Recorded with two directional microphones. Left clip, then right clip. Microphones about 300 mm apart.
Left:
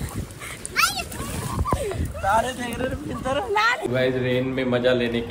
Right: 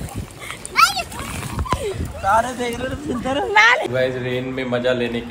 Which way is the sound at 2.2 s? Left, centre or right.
Centre.